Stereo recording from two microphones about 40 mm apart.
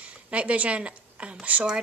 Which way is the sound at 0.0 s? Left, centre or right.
Right.